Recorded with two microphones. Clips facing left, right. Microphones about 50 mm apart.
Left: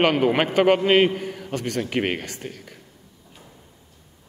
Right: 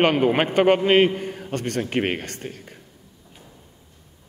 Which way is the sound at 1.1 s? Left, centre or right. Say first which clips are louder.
Even; right.